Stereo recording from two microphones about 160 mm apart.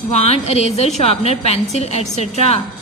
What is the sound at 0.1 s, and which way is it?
A woman's voice, 40° left (ahead or behind).